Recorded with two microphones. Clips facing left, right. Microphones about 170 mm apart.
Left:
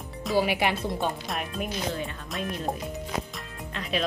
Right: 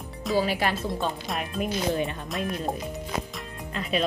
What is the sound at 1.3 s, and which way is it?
Speech, centre (ahead or behind).